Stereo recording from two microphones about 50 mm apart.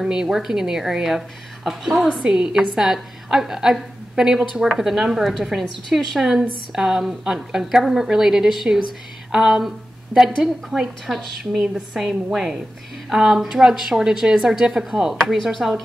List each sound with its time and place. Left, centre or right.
0.0 s a woman's voice: centre